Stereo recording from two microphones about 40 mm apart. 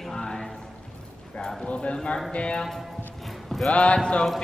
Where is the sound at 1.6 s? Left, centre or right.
Left.